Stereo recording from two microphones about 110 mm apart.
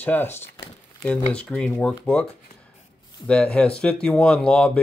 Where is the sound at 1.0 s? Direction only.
10° left (ahead or behind).